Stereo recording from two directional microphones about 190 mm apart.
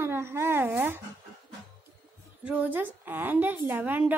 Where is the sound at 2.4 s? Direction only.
10° right (ahead or behind).